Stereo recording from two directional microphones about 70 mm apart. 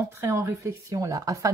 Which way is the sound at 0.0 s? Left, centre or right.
Right.